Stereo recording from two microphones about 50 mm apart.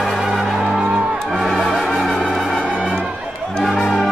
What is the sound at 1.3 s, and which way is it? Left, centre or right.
Music, centre.